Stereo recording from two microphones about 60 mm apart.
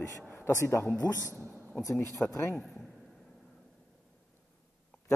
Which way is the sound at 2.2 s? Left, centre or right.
Left.